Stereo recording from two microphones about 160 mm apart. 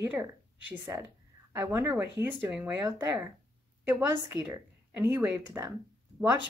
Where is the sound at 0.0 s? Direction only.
10° right (ahead or behind).